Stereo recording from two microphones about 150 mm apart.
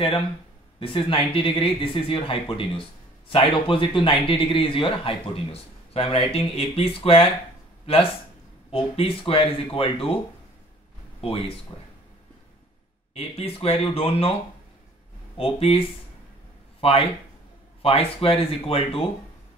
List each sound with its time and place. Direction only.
0.7 s a man's voice: 35° left (ahead or behind)
13.1 s a man's voice: 40° left (ahead or behind)
15.3 s a man's voice: 40° left (ahead or behind)
16.8 s a man's voice: 40° left (ahead or behind)